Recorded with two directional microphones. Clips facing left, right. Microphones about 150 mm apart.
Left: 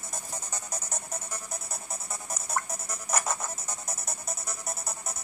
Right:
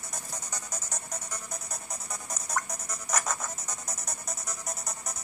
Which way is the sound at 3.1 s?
25° left (ahead or behind).